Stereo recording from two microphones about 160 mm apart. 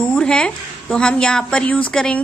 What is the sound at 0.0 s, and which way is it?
A woman's voice, 10° left (ahead or behind).